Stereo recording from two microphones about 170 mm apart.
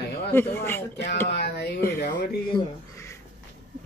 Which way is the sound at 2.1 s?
25° left (ahead or behind).